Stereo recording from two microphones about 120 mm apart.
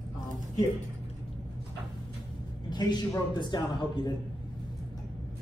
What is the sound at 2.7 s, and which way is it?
A man's voice, 35° left (ahead or behind).